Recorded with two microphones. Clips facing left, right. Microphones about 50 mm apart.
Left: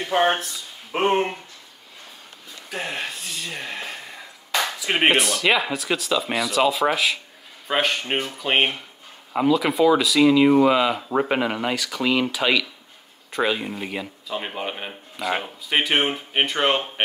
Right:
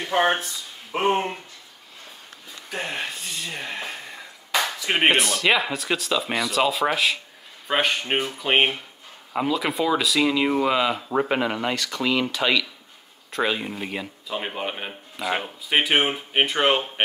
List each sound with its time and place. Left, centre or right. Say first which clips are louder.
0.1 s speech: left 1 dB; centre
0.9 s speech: left 2 dB; left
2.7 s speech: even; centre